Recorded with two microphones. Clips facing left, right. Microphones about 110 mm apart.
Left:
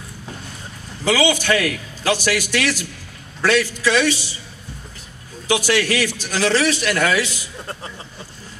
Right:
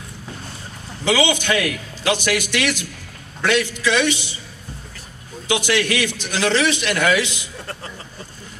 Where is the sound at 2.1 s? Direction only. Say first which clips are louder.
Even; 20° right (ahead or behind).